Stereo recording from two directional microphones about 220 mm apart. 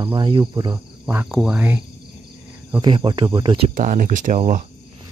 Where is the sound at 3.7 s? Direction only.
35° right (ahead or behind).